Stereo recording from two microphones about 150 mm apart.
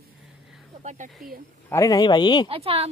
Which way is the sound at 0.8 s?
55° right (ahead or behind).